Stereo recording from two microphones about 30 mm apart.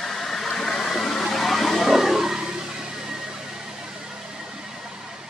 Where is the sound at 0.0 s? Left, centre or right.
Centre.